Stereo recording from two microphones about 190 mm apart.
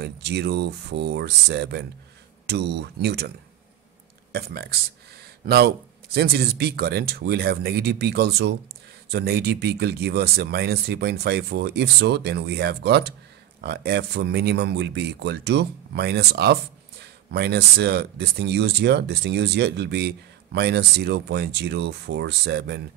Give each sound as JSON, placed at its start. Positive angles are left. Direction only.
{"t": 0.0, "sound": "speech", "side_deg": -60}